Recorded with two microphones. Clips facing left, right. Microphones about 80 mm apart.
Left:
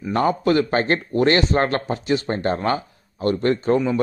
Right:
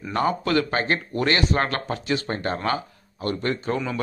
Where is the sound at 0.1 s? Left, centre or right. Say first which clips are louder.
Left 4 dB; left.